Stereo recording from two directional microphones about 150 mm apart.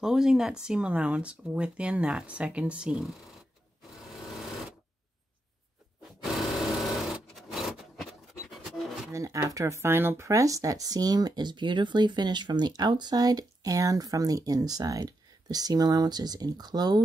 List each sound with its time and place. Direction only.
0.0 s speech: 5° right (ahead or behind)
3.9 s sewing machine: centre (ahead or behind)
6.2 s sewing machine: centre (ahead or behind)
9.1 s speech: 20° right (ahead or behind)